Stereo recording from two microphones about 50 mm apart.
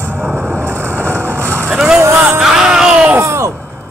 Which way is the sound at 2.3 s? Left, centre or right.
Centre.